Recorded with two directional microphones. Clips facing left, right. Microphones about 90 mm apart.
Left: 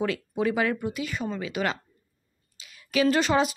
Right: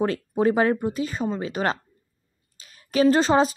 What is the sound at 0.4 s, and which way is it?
A woman's voice, 40° right (ahead or behind).